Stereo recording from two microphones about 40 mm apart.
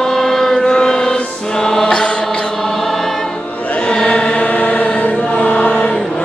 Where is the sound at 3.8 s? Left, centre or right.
Left.